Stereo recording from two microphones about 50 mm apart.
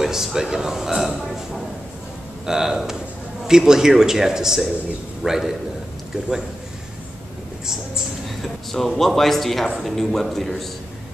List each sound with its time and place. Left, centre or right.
0.0 s speech: centre
2.4 s speech: centre
7.6 s speech: centre
8.4 s a man's voice: centre